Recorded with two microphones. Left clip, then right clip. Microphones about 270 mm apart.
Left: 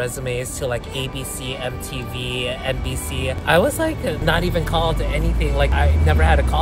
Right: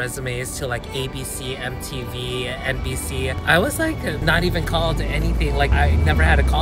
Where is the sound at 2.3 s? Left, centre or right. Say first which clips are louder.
Left 1 dB; centre.